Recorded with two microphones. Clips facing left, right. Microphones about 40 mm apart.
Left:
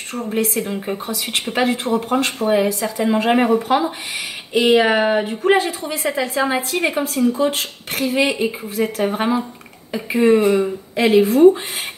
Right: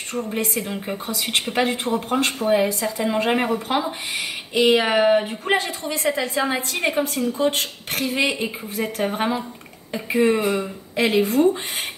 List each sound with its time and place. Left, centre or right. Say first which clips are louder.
0.1 s a woman's voice: left 4 dB; centre
2.3 s a woman's voice: left 2 dB; centre
2.6 s a woman's voice: left 3 dB; centre
5.5 s a woman's voice: left 5 dB; centre
9.0 s a woman's voice: left 2 dB; centre